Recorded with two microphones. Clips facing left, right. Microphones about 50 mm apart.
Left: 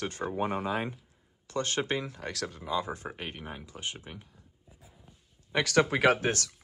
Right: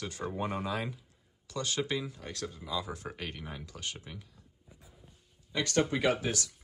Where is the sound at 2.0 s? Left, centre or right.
Left.